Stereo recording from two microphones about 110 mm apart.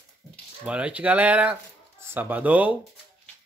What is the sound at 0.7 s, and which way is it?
Speech, 10° right (ahead or behind).